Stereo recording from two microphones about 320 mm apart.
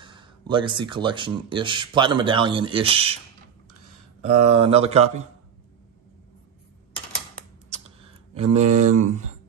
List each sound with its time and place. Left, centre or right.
0.0 s speech: centre
4.2 s speech: centre
8.4 s speech: centre